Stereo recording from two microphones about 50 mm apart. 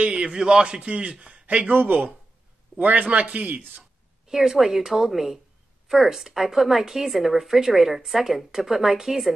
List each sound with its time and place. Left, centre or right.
0.0 s a man's voice: centre
1.7 s a man's voice: right
4.3 s speech: centre